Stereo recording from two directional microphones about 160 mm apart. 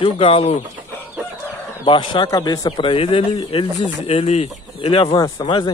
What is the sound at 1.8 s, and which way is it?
A man's voice, 30° left (ahead or behind).